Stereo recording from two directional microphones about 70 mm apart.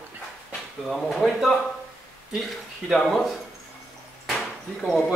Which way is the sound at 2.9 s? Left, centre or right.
Centre.